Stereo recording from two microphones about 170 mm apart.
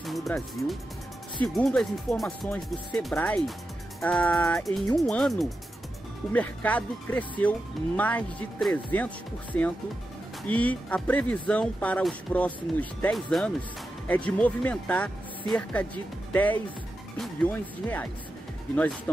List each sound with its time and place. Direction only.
0.0 s speech: centre (ahead or behind)